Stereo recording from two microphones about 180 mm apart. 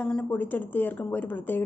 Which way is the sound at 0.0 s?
10° left (ahead or behind).